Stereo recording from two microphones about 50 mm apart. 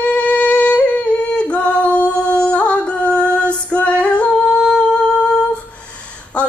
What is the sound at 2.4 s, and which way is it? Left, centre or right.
Music, left.